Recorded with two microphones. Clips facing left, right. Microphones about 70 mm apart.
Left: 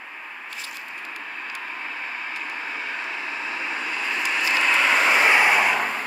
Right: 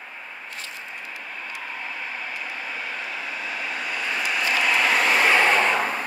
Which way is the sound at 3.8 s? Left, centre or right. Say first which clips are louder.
Right 1 dB; centre.